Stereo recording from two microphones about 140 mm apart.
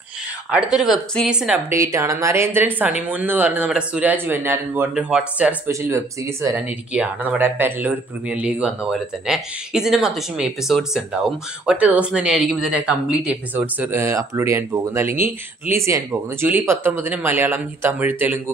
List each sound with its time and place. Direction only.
0.5 s speech: 5° right (ahead or behind)
1.7 s a woman's voice: 20° right (ahead or behind)
5.7 s speech: 20° right (ahead or behind)